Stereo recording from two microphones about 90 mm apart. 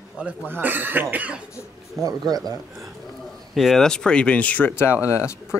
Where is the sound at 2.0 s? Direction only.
45° right (ahead or behind).